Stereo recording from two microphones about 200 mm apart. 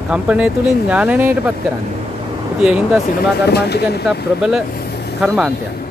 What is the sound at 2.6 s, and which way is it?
Speech, 5° right (ahead or behind).